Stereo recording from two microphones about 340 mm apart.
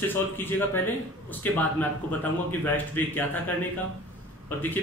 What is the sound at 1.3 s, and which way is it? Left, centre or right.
A man's voice, centre.